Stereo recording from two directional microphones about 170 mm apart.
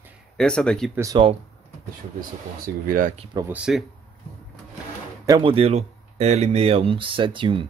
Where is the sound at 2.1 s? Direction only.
55° right (ahead or behind).